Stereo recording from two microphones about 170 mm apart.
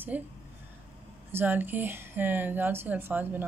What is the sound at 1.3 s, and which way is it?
Speech, 10° right (ahead or behind).